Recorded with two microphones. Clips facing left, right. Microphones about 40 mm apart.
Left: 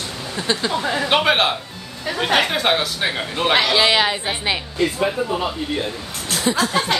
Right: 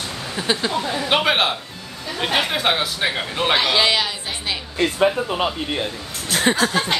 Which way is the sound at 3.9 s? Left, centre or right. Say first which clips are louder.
Left 4 dB; left.